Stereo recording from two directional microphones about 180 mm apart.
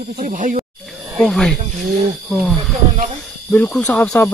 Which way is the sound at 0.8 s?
Centre (ahead or behind).